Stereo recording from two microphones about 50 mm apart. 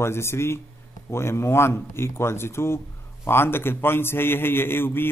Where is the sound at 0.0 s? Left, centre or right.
Left.